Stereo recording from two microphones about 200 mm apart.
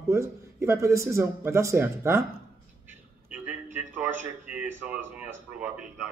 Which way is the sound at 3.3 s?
5° right (ahead or behind).